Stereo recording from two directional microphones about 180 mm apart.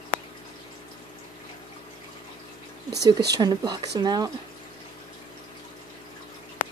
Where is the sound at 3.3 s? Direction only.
25° right (ahead or behind).